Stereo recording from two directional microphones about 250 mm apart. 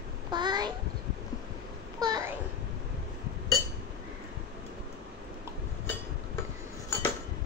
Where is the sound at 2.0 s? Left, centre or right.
Centre.